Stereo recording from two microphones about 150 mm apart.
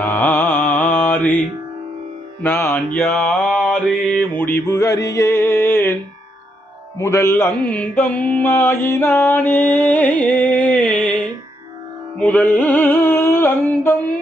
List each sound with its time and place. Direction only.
0.0 s mantra: 10° left (ahead or behind)
2.4 s mantra: 15° left (ahead or behind)
7.0 s mantra: 20° left (ahead or behind)
12.2 s music: 10° left (ahead or behind)